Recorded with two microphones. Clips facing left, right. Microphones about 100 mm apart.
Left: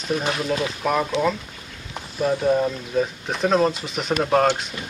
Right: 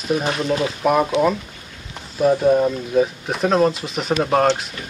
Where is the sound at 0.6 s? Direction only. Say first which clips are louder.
Right 5 dB; 15° right (ahead or behind).